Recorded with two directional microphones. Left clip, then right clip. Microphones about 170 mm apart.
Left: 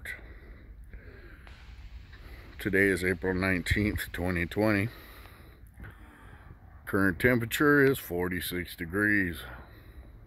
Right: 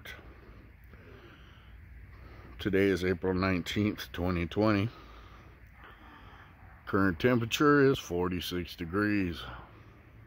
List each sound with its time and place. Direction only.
2.5 s speech: 5° left (ahead or behind)
6.8 s speech: 10° left (ahead or behind)